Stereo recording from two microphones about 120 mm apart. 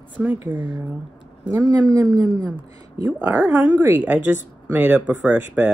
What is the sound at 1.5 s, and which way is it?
Speech, 30° right (ahead or behind).